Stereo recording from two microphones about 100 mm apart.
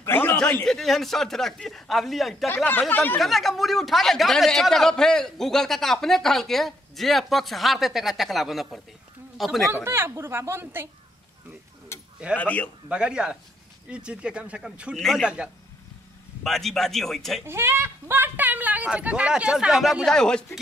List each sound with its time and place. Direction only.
0.0 s a sound: 20° left (ahead or behind)
0.7 s a man's voice: centre (ahead or behind)
2.4 s speech: 20° left (ahead or behind)
3.2 s a man's voice: centre (ahead or behind)
9.8 s a woman's voice: 25° right (ahead or behind)
12.4 s speech: 15° left (ahead or behind)
12.8 s speech: 10° right (ahead or behind)
15.0 s a man's voice: 5° left (ahead or behind)
15.2 s speech: 10° right (ahead or behind)
16.4 s a man's voice: centre (ahead or behind)
17.5 s speech: 25° right (ahead or behind); by 20.0 s centre (ahead or behind)
20.1 s speech: 10° left (ahead or behind)